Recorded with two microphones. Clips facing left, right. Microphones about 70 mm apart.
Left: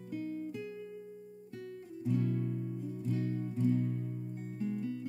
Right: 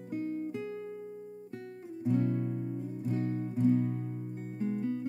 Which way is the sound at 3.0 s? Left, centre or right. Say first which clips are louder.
Right 3 dB; right.